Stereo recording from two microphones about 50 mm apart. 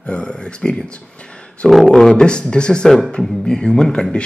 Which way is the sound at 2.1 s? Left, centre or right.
Centre.